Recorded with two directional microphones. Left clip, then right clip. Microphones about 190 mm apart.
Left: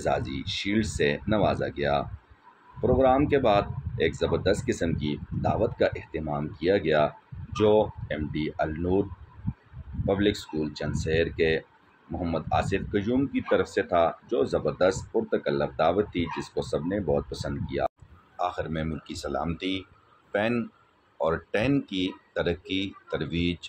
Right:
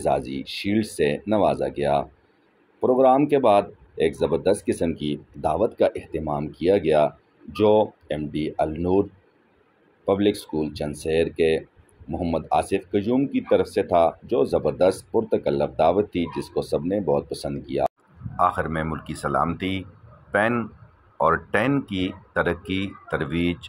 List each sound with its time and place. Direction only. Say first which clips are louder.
0.0 s speech: right 4 dB; 25° right (ahead or behind)
10.0 s speech: right 4 dB; 25° right (ahead or behind)
18.3 s a man's voice: right 8 dB; 15° right (ahead or behind)